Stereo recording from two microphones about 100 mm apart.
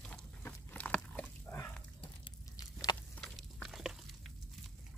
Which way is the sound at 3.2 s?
Centre (ahead or behind).